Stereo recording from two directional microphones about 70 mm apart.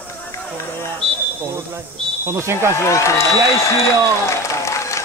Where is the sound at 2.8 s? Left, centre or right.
Left.